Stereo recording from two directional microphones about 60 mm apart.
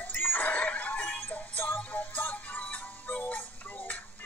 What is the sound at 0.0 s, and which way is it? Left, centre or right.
Music, left.